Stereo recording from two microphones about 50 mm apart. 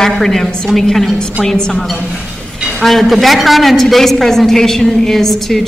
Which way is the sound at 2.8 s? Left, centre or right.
Centre.